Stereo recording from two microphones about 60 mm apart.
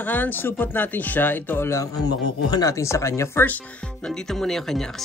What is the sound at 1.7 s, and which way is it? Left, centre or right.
Speech, left.